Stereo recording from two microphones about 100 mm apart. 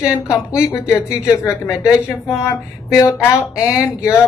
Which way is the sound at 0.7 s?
30° left (ahead or behind).